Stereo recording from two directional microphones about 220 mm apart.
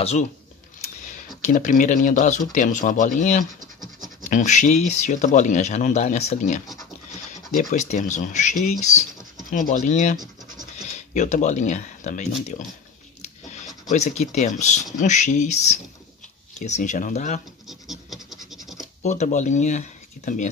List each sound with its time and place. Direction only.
1.4 s speech: 35° left (ahead or behind)
3.5 s scratch: 35° right (ahead or behind)
4.2 s speech: 35° left (ahead or behind)
11.1 s speech: 35° left (ahead or behind)
13.8 s speech: 30° left (ahead or behind)
17.6 s scratch: centre (ahead or behind)
19.0 s speech: 35° left (ahead or behind)